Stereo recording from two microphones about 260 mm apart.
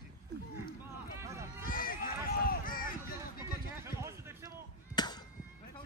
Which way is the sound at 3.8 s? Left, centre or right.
Centre.